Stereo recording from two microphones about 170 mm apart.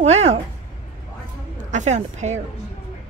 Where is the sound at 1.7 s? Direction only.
45° right (ahead or behind).